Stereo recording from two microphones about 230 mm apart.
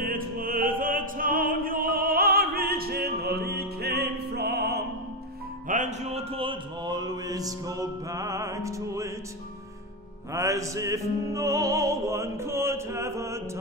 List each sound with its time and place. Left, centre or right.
0.0 s opera: right
5.7 s mantra: right; by 9.1 s centre
10.3 s music: centre